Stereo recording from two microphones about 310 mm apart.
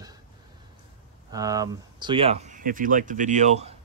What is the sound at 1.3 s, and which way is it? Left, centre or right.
Speech, centre.